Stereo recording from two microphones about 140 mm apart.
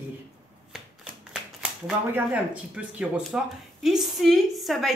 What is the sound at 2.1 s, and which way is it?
A woman's voice, 10° right (ahead or behind).